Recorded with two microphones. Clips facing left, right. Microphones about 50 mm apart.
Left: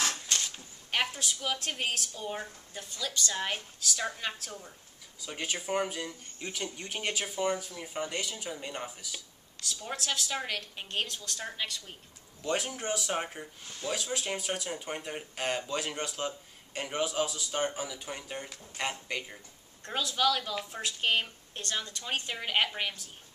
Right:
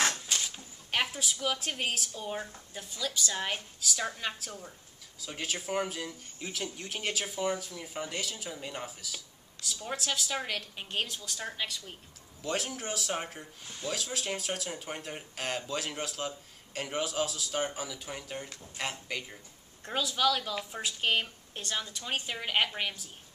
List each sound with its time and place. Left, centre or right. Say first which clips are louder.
0.3 s speech: even; centre